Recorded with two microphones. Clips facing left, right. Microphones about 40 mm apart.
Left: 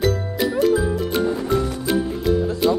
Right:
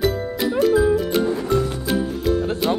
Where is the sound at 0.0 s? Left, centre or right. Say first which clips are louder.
Even; centre.